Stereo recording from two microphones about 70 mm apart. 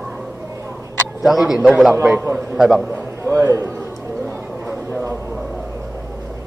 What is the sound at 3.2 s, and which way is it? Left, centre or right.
Speech, right.